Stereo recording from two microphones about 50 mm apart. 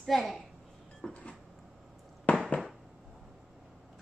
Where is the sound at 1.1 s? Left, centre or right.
Left.